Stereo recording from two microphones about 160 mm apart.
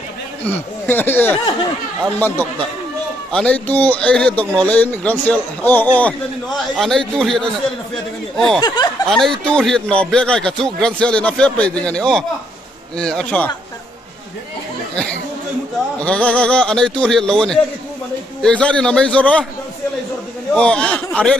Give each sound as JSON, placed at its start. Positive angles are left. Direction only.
{"t": 0.4, "sound": "a man's voice", "side_deg": 10}
{"t": 8.5, "sound": "speech", "side_deg": 25}
{"t": 9.1, "sound": "a man's voice", "side_deg": 5}
{"t": 16.0, "sound": "a man's voice", "side_deg": 10}
{"t": 20.5, "sound": "speech", "side_deg": 5}